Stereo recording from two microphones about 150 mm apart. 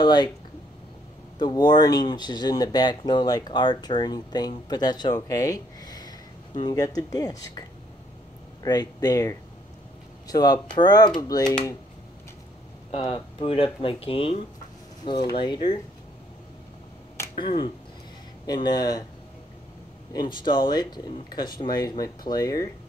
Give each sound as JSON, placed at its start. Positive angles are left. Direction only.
{"t": 0.0, "sound": "speech", "side_deg": 30}
{"t": 1.4, "sound": "speech", "side_deg": 30}
{"t": 8.6, "sound": "speech", "side_deg": 25}
{"t": 12.9, "sound": "speech", "side_deg": 35}
{"t": 17.4, "sound": "speech", "side_deg": 35}
{"t": 20.1, "sound": "speech", "side_deg": 30}